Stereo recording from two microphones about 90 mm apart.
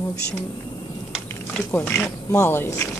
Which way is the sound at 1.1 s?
5° left (ahead or behind).